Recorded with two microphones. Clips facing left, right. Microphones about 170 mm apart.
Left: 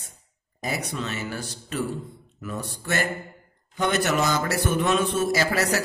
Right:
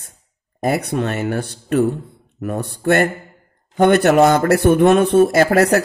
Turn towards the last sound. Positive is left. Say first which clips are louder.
# right 10 dB
turn(degrees=-55)  # may be behind; listen again after turning